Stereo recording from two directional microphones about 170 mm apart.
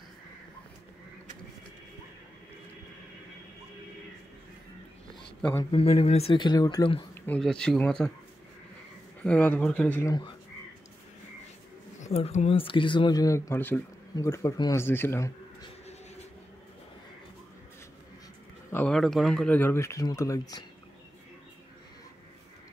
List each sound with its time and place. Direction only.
5.4 s speech: 15° left (ahead or behind)
5.7 s speech: 30° left (ahead or behind)
7.2 s speech: 5° left (ahead or behind)
9.2 s speech: 10° left (ahead or behind)
12.0 s speech: 40° left (ahead or behind); by 15.3 s 15° left (ahead or behind)
18.7 s speech: 10° left (ahead or behind)
18.9 s speech: centre (ahead or behind); by 20.6 s 20° left (ahead or behind)